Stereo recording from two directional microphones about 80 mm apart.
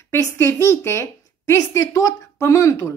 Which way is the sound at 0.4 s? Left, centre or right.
Left.